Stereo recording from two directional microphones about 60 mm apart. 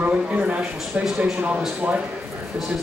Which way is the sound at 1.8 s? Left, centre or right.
Right.